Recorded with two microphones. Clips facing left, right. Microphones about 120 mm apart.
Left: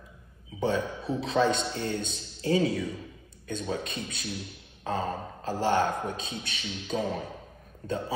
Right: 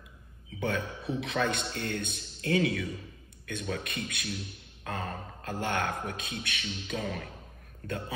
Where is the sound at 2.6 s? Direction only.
25° left (ahead or behind).